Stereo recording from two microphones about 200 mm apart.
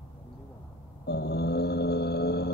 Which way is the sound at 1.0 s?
55° left (ahead or behind).